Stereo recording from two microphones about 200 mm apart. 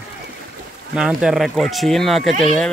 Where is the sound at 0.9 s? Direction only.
5° right (ahead or behind).